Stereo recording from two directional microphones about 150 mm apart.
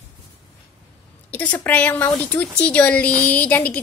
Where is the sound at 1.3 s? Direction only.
10° left (ahead or behind).